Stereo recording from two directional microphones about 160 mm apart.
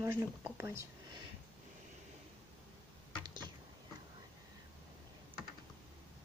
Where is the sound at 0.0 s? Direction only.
15° right (ahead or behind).